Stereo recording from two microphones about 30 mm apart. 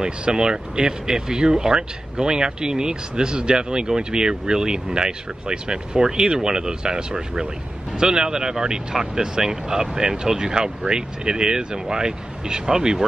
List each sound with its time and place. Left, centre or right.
0.3 s speech: right